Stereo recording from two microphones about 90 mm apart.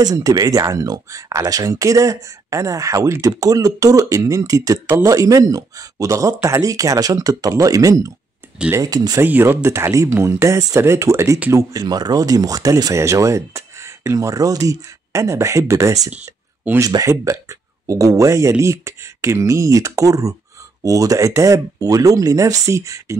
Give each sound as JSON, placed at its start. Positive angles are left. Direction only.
{"t": 0.0, "sound": "speech", "side_deg": -45}
{"t": 9.2, "sound": "speech", "side_deg": -25}